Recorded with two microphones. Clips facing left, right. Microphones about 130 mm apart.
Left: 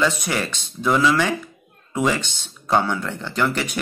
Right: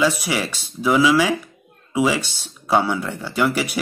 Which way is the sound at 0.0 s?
5° right (ahead or behind).